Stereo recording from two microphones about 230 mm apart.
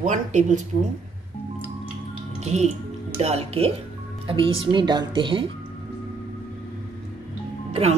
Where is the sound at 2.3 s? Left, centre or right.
Right.